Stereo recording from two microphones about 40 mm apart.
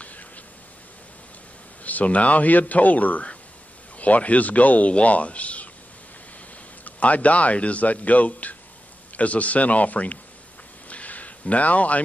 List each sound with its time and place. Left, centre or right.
1.8 s a man's voice: left
6.8 s a man's voice: left
10.9 s a sound: left